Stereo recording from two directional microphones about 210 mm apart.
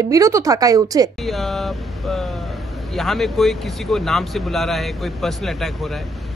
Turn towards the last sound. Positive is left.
turn(degrees=0)  # may be behind; listen again after turning